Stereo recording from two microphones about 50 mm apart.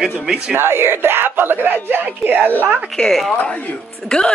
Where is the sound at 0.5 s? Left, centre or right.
Right.